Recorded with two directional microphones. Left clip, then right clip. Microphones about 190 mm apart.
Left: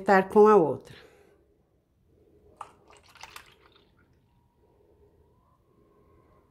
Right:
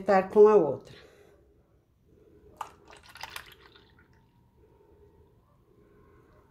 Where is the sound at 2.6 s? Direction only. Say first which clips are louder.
Right 4 dB; 10° right (ahead or behind).